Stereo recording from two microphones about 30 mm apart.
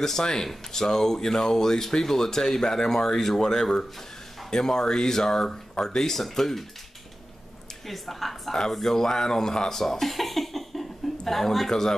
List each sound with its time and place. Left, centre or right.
0.2 s speech: centre
6.1 s speech: centre
7.8 s a woman's voice: centre